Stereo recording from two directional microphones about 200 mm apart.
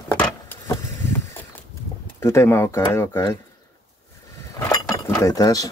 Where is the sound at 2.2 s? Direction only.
15° left (ahead or behind).